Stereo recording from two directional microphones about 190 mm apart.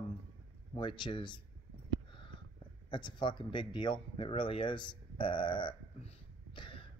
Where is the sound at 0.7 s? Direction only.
25° left (ahead or behind).